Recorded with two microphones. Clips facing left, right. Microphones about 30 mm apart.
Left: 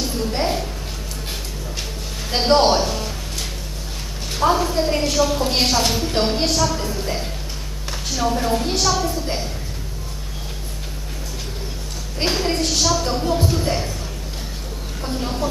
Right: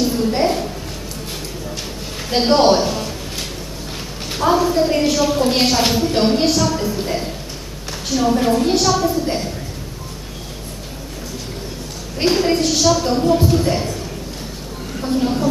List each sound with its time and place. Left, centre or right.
0.0 s a sound: centre
2.2 s a sound: centre
4.4 s a woman's voice: centre
8.1 s a woman's voice: centre
12.2 s a woman's voice: centre
15.0 s a woman's voice: centre